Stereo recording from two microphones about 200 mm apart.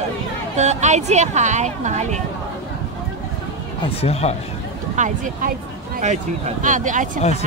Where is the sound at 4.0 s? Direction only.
30° left (ahead or behind).